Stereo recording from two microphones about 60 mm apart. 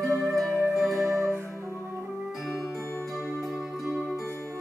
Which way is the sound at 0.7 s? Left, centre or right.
Centre.